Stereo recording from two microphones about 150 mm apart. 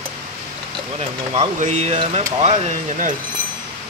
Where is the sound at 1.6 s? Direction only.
50° right (ahead or behind).